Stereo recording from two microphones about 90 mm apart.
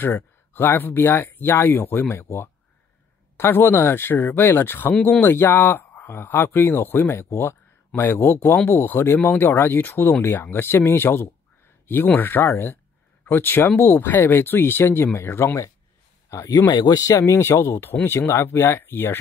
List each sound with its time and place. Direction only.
0.0 s speech: 25° left (ahead or behind)
16.5 s speech: 55° left (ahead or behind); by 19.1 s 25° left (ahead or behind)